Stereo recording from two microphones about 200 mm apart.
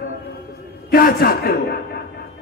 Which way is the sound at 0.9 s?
45° left (ahead or behind).